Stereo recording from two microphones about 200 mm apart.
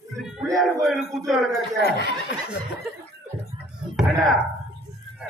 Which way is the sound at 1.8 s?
55° left (ahead or behind).